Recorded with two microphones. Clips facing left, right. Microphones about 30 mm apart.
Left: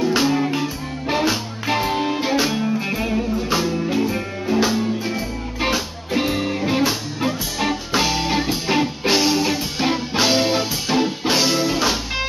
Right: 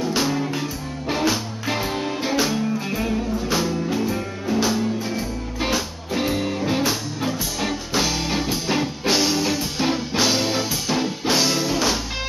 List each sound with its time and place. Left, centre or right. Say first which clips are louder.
0.0 s music: left 4 dB; centre